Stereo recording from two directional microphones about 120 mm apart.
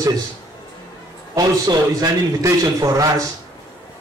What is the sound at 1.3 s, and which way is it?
A man's voice, 30° right (ahead or behind).